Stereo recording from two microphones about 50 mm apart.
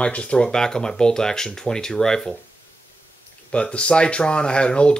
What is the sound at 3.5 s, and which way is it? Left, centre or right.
Speech, left.